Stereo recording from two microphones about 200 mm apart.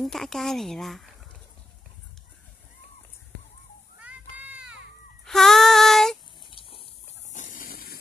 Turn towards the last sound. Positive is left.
turn(degrees=50)  # may be behind; listen again after turning